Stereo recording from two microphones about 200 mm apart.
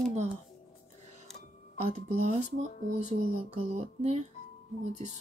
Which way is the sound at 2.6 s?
35° right (ahead or behind).